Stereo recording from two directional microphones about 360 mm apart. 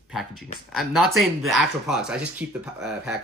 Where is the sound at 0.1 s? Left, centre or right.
Centre.